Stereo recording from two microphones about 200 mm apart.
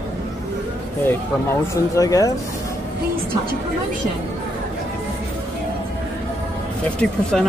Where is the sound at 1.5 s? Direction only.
15° left (ahead or behind).